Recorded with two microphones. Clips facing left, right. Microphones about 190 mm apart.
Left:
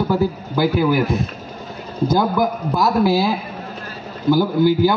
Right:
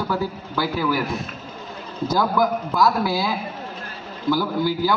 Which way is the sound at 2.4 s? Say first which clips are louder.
Left 1 dB; 30° left (ahead or behind).